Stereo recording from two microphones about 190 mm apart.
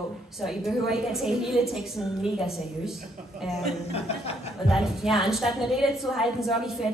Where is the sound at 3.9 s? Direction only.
30° left (ahead or behind).